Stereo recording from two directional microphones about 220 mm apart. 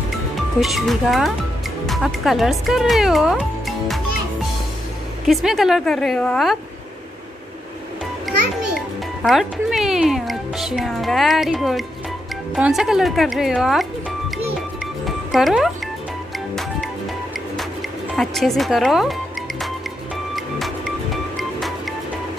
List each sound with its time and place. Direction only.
0.6 s speech: centre (ahead or behind)
5.2 s speech: centre (ahead or behind)
9.2 s speech: centre (ahead or behind)
15.0 s music: centre (ahead or behind)
18.1 s speech: centre (ahead or behind)
20.3 s music: centre (ahead or behind)